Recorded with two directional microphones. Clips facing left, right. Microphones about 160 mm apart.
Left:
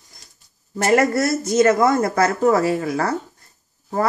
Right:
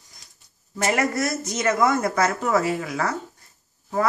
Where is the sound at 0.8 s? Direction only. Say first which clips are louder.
Left 6 dB; 40° left (ahead or behind).